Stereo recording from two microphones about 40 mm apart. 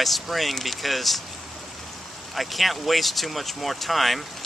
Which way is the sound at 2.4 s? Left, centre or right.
Centre.